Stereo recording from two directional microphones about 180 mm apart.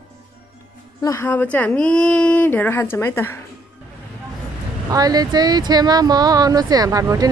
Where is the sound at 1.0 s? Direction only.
15° left (ahead or behind).